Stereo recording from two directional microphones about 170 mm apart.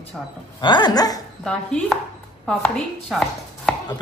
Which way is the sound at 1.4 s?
5° left (ahead or behind).